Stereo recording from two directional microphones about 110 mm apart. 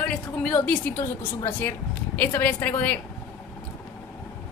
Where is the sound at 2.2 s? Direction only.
15° left (ahead or behind).